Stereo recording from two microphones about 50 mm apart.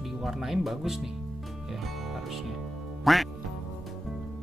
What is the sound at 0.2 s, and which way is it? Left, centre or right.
Speech, centre.